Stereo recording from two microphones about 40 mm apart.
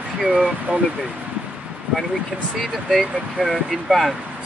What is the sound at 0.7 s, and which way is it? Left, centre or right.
Speech, right.